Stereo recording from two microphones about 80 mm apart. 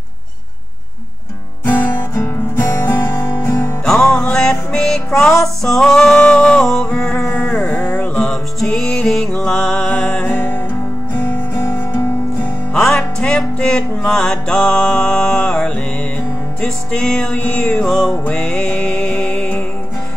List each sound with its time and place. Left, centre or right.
1.6 s music: left
3.8 s music: centre
8.2 s music: centre; by 11.6 s left
12.7 s music: centre